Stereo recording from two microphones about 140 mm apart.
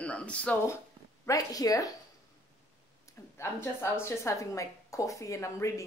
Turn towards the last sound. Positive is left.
turn(degrees=20)  # may be behind; listen again after turning